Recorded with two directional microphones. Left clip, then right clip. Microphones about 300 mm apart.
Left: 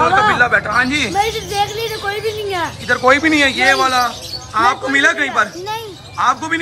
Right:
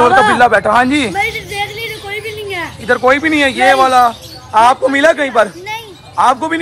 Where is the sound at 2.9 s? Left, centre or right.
Centre.